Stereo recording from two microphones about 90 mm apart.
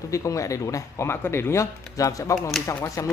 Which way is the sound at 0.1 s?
35° left (ahead or behind).